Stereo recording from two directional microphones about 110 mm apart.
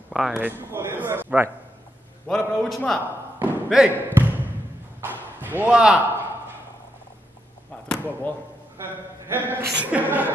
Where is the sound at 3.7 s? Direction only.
5° right (ahead or behind).